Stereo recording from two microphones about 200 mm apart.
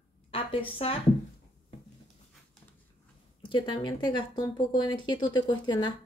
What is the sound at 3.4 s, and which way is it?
Speech, 25° left (ahead or behind).